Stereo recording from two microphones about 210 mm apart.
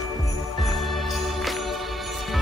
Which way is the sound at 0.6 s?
Centre (ahead or behind).